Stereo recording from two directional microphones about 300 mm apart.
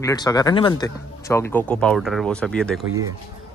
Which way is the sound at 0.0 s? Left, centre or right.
Centre.